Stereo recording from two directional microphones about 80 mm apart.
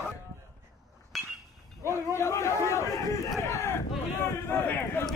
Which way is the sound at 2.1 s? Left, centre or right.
Left.